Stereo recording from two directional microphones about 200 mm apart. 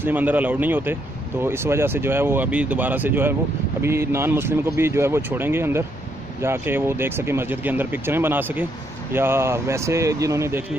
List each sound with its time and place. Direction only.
0.0 s speech: 10° right (ahead or behind)